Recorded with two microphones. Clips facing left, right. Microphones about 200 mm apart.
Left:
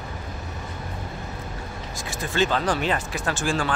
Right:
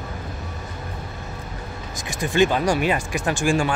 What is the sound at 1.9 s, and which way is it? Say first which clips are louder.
Speech: right 5 dB; 15° right (ahead or behind).